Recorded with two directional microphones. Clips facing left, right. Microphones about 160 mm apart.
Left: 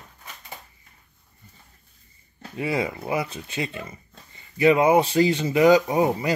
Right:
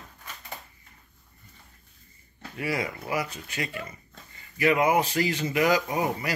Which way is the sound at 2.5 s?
25° left (ahead or behind).